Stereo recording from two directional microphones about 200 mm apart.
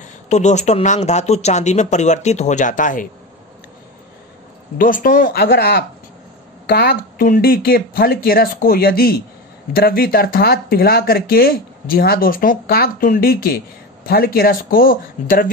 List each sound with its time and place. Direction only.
0.0 s speech: 35° left (ahead or behind)
4.7 s speech: 45° left (ahead or behind)